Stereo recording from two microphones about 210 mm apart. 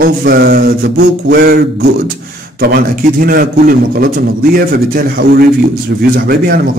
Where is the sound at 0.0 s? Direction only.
45° right (ahead or behind).